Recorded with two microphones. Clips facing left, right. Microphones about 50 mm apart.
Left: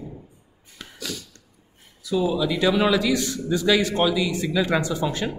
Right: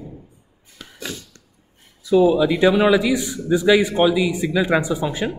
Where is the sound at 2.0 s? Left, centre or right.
Right.